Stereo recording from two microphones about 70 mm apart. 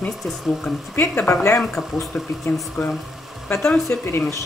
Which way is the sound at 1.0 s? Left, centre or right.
Left.